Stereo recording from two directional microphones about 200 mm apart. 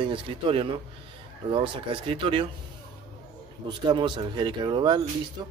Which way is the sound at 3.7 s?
25° right (ahead or behind).